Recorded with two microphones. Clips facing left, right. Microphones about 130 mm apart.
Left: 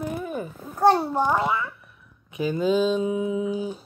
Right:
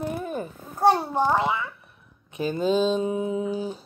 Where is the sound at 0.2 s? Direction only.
30° right (ahead or behind).